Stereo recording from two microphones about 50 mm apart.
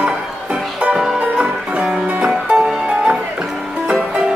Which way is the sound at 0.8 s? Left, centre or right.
Centre.